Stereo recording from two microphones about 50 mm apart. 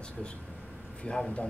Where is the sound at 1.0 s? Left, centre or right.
Centre.